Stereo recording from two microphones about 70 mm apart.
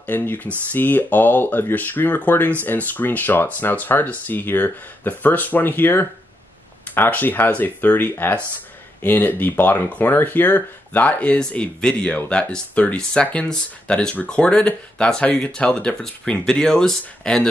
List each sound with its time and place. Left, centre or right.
0.0 s speech: left; by 17.5 s centre